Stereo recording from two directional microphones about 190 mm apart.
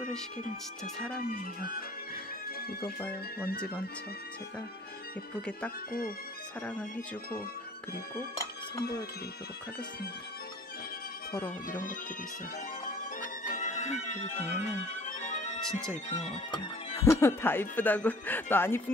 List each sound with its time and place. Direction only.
1.1 s speech: 50° left (ahead or behind)
3.3 s speech: 55° left (ahead or behind)
6.6 s speech: 5° left (ahead or behind)
12.8 s music: 45° left (ahead or behind)
17.0 s speech: 15° left (ahead or behind)